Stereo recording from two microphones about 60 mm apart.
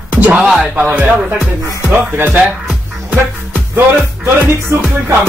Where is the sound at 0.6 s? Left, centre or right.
Right.